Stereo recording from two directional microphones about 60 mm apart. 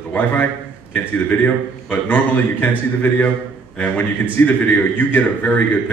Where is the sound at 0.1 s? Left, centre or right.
Left.